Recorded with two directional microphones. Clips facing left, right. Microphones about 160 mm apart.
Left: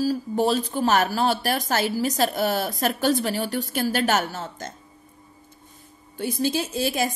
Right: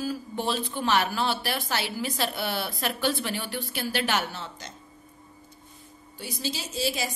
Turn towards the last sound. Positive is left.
turn(degrees=55)  # may be behind; listen again after turning